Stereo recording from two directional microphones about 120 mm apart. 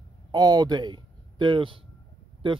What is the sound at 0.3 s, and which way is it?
Speech, 35° right (ahead or behind).